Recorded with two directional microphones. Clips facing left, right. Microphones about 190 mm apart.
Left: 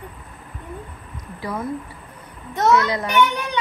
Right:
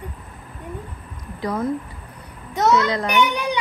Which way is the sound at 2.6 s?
20° right (ahead or behind).